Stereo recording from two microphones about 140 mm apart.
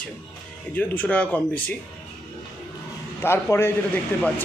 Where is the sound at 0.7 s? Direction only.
10° left (ahead or behind).